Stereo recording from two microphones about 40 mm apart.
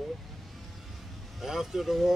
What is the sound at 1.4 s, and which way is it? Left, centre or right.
Speech, centre.